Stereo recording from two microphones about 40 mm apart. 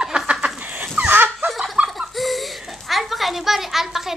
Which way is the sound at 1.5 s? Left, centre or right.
Centre.